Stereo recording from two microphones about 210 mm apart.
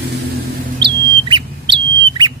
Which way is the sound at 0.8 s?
25° right (ahead or behind).